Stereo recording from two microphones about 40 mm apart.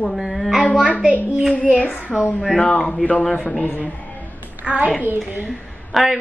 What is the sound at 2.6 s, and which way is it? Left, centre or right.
Speech, left.